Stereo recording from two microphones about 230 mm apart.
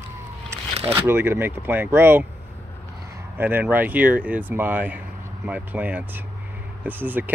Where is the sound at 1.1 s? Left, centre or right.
Centre.